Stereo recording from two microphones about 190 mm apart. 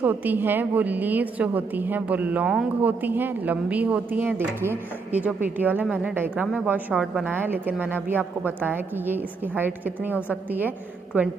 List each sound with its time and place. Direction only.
0.0 s a woman's voice: 10° right (ahead or behind)
10.1 s a woman's voice: 10° left (ahead or behind)
11.1 s a woman's voice: 10° right (ahead or behind)